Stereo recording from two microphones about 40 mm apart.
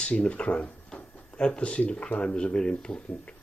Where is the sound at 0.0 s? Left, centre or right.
Left.